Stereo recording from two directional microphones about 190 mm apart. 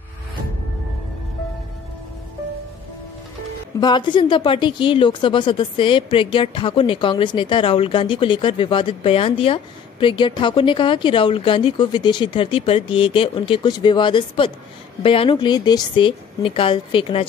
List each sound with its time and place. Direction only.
3.8 s speech: 25° left (ahead or behind)